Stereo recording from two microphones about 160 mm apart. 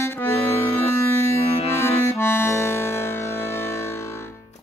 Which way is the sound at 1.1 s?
15° left (ahead or behind).